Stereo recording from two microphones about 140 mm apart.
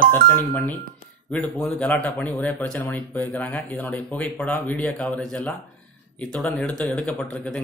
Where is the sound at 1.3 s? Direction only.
10° left (ahead or behind).